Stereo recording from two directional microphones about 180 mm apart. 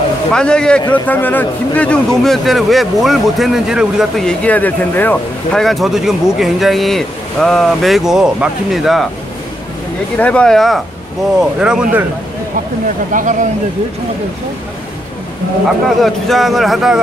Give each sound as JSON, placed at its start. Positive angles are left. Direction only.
{"t": 0.3, "sound": "a man's voice", "side_deg": 5}
{"t": 10.1, "sound": "speech", "side_deg": 5}
{"t": 13.1, "sound": "speech", "side_deg": -45}
{"t": 16.0, "sound": "speech", "side_deg": 0}